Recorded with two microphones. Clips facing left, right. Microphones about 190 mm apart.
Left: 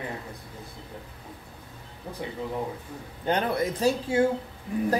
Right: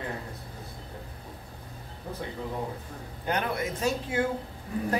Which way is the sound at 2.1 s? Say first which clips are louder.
Even; 15° left (ahead or behind).